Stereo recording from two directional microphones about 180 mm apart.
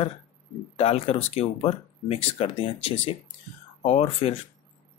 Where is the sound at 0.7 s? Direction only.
35° left (ahead or behind).